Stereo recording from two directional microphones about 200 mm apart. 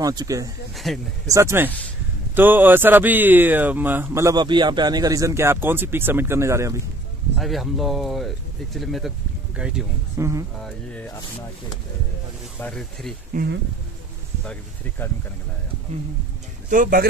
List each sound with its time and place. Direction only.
0.0 s speech: 20° right (ahead or behind)
0.7 s speech: centre (ahead or behind)
1.3 s speech: 15° right (ahead or behind)
7.3 s speech: centre (ahead or behind)
10.6 s speech: 5° left (ahead or behind)
12.5 s speech: 5° left (ahead or behind)
13.3 s speech: 50° right (ahead or behind)
14.4 s speech: 5° left (ahead or behind)
16.6 s speech: 40° right (ahead or behind)